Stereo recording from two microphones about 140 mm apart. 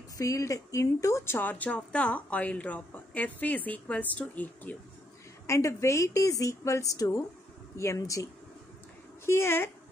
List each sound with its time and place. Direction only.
0.2 s a woman's voice: 25° left (ahead or behind)